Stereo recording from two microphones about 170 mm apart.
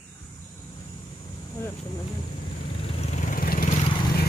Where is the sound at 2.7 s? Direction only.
35° left (ahead or behind); by 3.7 s 55° left (ahead or behind).